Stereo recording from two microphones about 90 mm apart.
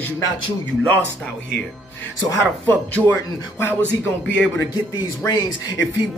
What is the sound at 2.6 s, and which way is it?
Speech, 20° left (ahead or behind).